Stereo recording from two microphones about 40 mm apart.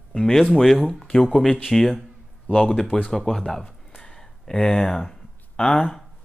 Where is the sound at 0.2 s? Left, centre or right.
Centre.